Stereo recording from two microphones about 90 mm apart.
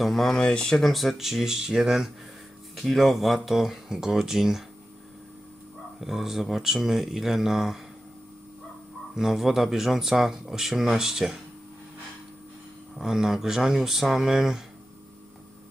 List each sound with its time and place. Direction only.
0.0 s speech: centre (ahead or behind)
5.9 s speech: 5° right (ahead or behind)
9.1 s speech: 5° right (ahead or behind)
12.9 s speech: 5° right (ahead or behind)